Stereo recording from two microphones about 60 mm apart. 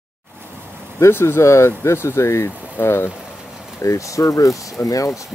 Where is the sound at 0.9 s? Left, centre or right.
Left.